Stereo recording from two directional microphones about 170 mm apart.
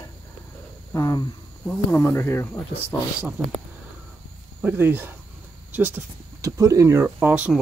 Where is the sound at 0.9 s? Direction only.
20° left (ahead or behind).